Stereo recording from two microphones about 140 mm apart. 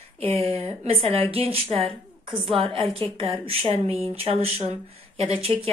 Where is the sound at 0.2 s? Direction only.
45° right (ahead or behind).